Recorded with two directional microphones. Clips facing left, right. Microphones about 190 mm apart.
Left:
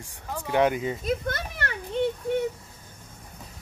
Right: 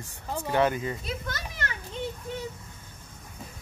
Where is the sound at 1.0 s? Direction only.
55° left (ahead or behind).